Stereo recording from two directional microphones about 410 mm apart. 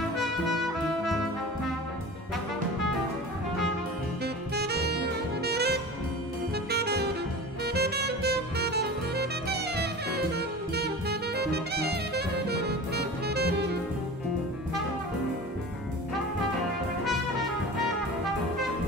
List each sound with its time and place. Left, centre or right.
4.2 s saxophone: right
7.6 s music: right